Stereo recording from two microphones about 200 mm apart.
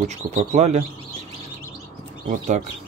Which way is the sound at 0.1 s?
35° right (ahead or behind).